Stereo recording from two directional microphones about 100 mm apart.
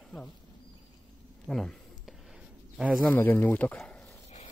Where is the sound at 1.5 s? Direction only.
5° left (ahead or behind).